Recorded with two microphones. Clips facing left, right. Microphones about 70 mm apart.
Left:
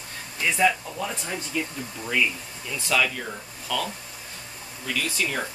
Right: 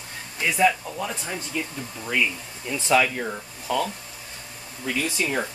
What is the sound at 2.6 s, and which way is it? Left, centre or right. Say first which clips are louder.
Speech: right 4 dB; right.